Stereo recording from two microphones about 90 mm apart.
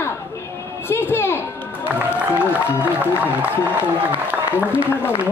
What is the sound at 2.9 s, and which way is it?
Speech, 15° right (ahead or behind).